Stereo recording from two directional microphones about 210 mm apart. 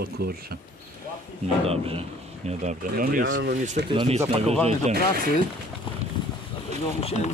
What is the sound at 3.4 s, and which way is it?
Speech, 50° right (ahead or behind).